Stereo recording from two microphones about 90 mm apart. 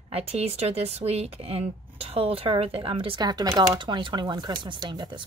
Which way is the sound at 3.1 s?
50° right (ahead or behind).